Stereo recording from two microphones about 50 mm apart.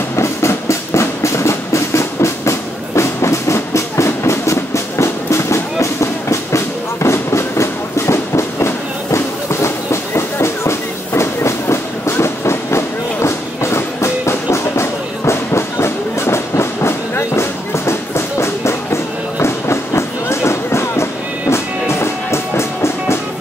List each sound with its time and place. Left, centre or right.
0.1 s train: left
3.0 s music: left
19.4 s a sound: left